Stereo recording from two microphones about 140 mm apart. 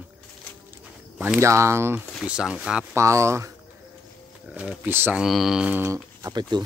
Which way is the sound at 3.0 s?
20° right (ahead or behind).